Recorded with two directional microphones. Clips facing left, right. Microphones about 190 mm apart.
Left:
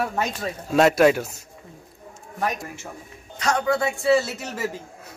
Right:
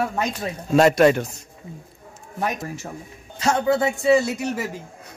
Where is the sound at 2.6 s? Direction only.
40° right (ahead or behind).